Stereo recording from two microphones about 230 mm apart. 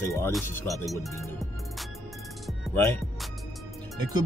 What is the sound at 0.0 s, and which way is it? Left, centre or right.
Speech, centre.